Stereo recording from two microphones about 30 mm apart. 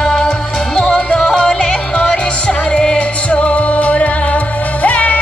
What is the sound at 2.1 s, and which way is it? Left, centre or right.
Music, left.